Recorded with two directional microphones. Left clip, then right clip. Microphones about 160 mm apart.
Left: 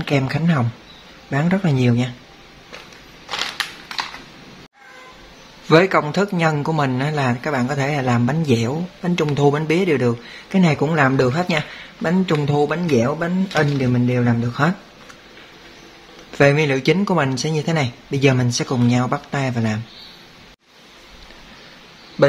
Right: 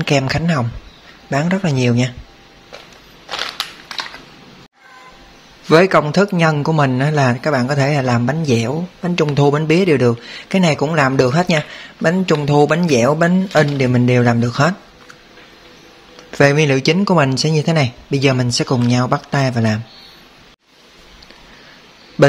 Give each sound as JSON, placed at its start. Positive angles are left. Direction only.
{"t": 0.0, "sound": "a man's voice", "side_deg": -40}
{"t": 3.3, "sound": "walk", "side_deg": 0}
{"t": 5.7, "sound": "a man's voice", "side_deg": -30}
{"t": 16.3, "sound": "speech", "side_deg": -25}